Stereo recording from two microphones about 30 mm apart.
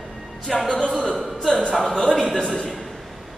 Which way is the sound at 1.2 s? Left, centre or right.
Centre.